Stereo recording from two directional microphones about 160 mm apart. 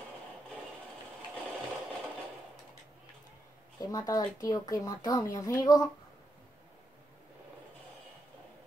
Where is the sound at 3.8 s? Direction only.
20° left (ahead or behind).